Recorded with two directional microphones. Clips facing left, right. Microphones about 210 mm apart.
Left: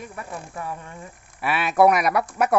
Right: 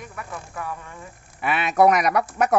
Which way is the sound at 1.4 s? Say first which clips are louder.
Even; 5° left (ahead or behind).